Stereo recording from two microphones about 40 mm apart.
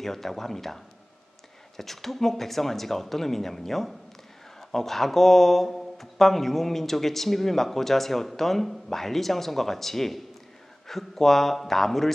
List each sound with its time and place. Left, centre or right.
0.0 s speech: centre